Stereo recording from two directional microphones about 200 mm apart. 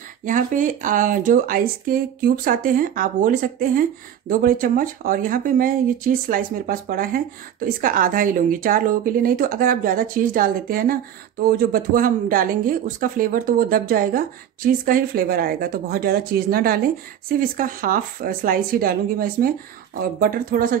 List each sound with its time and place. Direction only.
0.2 s speech: 40° right (ahead or behind)